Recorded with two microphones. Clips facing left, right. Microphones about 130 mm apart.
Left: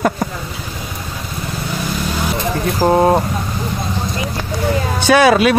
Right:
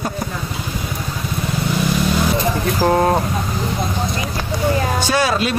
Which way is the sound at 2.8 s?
15° left (ahead or behind).